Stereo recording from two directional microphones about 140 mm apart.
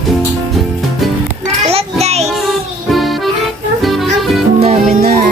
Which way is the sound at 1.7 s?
50° right (ahead or behind).